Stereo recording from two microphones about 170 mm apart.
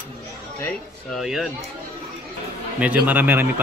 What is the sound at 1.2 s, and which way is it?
Speech, centre (ahead or behind).